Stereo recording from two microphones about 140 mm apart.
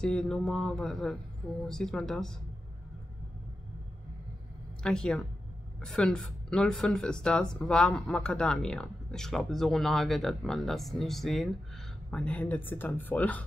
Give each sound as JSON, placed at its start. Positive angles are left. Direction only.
{"t": 0.0, "sound": "speech", "side_deg": 5}
{"t": 4.8, "sound": "speech", "side_deg": 5}